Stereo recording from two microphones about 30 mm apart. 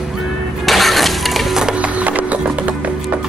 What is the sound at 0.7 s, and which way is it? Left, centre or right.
Breaking, centre.